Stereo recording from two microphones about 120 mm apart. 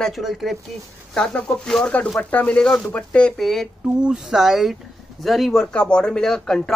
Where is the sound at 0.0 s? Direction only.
Centre (ahead or behind).